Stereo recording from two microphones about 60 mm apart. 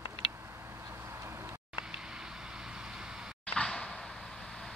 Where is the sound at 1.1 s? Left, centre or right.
Right.